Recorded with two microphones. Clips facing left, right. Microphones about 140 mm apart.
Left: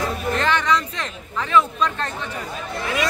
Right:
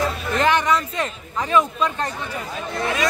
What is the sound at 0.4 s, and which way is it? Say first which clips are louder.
Speech: right 3 dB; 15° right (ahead or behind).